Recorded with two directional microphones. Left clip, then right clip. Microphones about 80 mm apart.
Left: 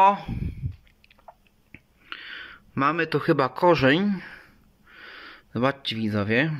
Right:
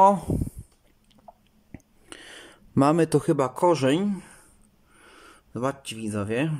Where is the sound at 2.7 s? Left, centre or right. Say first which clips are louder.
Right 2 dB; right.